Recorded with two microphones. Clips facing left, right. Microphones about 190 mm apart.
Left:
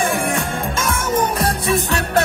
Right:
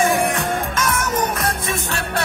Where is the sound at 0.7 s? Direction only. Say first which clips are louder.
Left 2 dB; 25° left (ahead or behind).